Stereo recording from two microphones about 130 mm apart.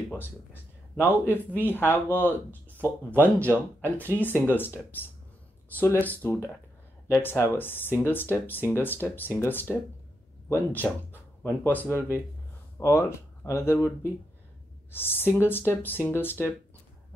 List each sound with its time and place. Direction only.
0.1 s speech: 15° left (ahead or behind)
1.0 s speech: 15° right (ahead or behind)
1.3 s speech: 15° left (ahead or behind)
3.8 s speech: 15° right (ahead or behind)
4.2 s speech: 15° left (ahead or behind)
14.9 s speech: 15° left (ahead or behind)